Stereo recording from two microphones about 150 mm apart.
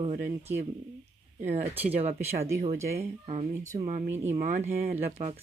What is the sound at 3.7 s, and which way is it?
Speech, 55° right (ahead or behind).